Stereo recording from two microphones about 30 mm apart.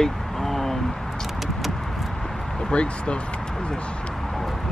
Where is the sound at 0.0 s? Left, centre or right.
Centre.